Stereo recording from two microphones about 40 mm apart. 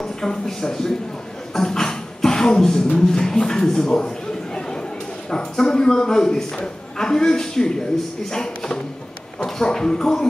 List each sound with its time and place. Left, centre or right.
0.0 s a sound: centre
0.5 s a man's voice: centre
1.5 s beatboxing: centre
3.0 s a man's voice: centre
4.6 s a sound: centre
5.3 s a man's voice: centre